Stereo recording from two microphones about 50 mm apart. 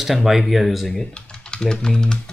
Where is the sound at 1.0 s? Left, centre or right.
Centre.